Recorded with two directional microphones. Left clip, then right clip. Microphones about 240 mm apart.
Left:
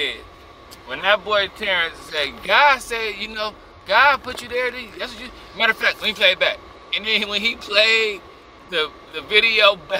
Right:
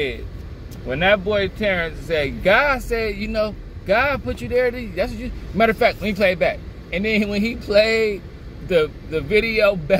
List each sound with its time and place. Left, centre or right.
0.8 s a man's voice: left